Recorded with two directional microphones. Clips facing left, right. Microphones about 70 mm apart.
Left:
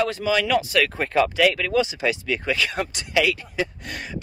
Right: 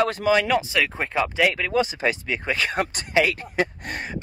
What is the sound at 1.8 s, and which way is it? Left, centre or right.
Speech, right.